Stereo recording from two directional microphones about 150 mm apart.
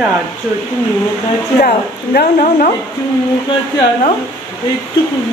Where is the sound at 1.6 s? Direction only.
90° left.